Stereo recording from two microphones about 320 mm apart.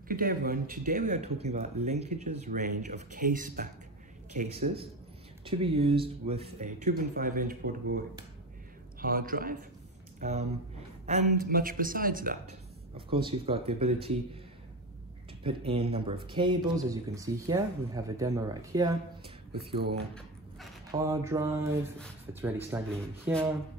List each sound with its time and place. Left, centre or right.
0.1 s speech: right
9.0 s speech: right
15.4 s speech: centre
20.9 s speech: centre
21.9 s speech: centre